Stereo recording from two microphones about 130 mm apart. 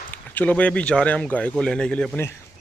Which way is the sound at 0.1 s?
15° left (ahead or behind).